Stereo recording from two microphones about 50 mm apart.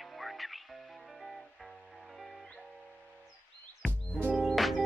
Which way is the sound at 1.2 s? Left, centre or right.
Centre.